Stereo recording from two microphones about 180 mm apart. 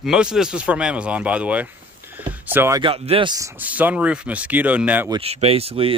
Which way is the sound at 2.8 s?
30° right (ahead or behind).